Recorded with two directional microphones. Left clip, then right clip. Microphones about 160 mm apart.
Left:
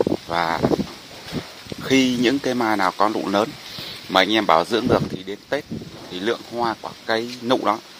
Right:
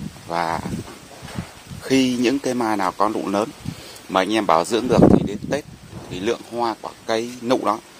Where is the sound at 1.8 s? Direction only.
10° right (ahead or behind).